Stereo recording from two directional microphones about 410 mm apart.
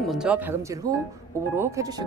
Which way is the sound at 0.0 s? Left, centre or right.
Centre.